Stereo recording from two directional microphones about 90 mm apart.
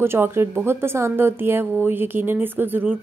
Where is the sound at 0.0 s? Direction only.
25° right (ahead or behind).